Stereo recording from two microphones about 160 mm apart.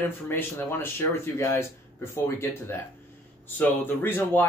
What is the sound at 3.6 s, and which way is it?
Speech, 10° left (ahead or behind).